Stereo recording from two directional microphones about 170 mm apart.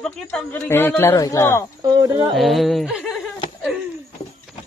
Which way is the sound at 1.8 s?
25° right (ahead or behind).